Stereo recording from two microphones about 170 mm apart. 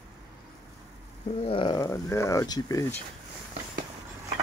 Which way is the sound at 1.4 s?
30° left (ahead or behind).